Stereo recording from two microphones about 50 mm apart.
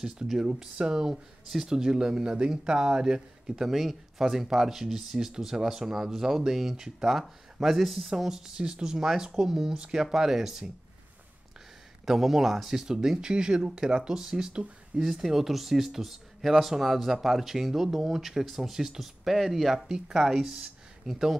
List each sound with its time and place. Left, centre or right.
0.0 s speech: centre
12.1 s speech: centre